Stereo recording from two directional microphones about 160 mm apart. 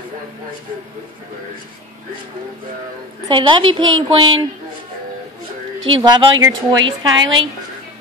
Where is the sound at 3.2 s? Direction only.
30° right (ahead or behind).